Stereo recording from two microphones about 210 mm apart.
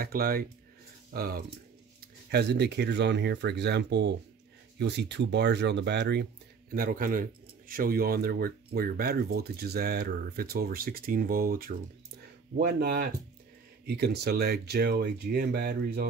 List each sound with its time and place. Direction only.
0.0 s a man's voice: 45° right (ahead or behind)